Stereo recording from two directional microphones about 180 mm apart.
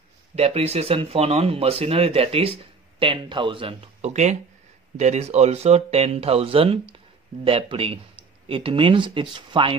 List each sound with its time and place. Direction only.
0.4 s speech: 35° right (ahead or behind)